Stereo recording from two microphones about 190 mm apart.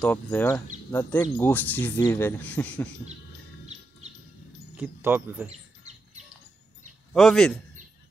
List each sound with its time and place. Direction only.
0.0 s speech: 10° left (ahead or behind)
4.7 s speech: 10° right (ahead or behind)
5.5 s bird: 35° right (ahead or behind)
7.2 s a man's voice: centre (ahead or behind)